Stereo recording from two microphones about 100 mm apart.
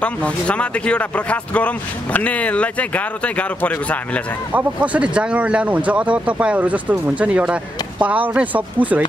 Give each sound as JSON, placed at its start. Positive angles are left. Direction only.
{"t": 0.0, "sound": "speech", "side_deg": 10}
{"t": 4.5, "sound": "speech", "side_deg": -15}